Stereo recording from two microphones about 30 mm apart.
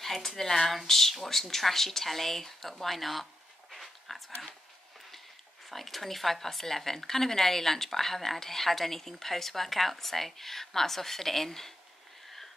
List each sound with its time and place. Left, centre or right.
0.0 s speech: centre
3.7 s a sound: centre
5.7 s speech: centre